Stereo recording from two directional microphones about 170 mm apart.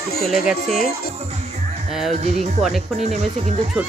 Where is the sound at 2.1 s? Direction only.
40° right (ahead or behind).